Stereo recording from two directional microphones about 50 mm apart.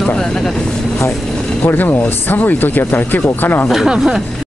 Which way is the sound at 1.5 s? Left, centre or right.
Left.